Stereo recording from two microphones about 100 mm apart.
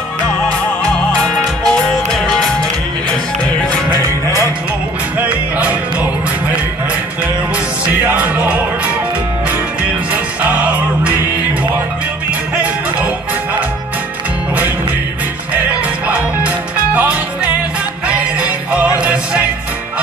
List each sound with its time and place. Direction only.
1.2 s music: 5° left (ahead or behind)
5.2 s music: 15° right (ahead or behind)
7.9 s music: 15° right (ahead or behind)
16.1 s music: 15° right (ahead or behind)